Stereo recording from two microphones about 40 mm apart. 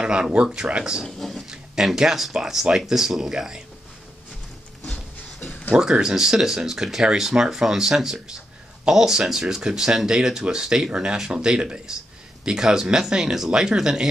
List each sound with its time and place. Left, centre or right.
0.0 s speech: right
1.0 s speech: centre
1.5 s speech: centre
4.8 s a sound: centre
5.8 s speech: centre